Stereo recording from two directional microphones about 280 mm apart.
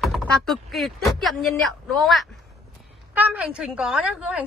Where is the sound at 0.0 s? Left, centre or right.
Centre.